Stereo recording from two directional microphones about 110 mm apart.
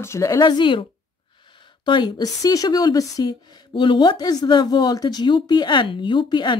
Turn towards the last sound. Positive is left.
turn(degrees=45)  # may be behind; listen again after turning